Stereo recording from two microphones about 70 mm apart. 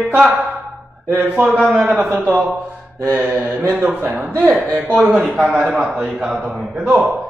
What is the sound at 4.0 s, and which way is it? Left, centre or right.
Speech, right.